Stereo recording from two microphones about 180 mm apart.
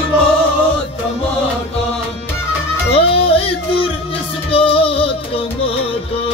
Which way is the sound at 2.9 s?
30° left (ahead or behind).